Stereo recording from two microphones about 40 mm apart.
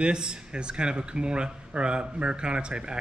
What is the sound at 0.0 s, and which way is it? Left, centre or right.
A man's voice, right.